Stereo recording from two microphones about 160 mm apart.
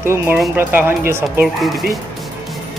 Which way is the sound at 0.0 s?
15° right (ahead or behind).